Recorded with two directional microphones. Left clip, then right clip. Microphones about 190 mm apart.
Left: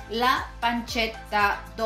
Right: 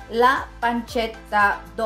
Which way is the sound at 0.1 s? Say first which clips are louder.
Right 5 dB; 35° right (ahead or behind).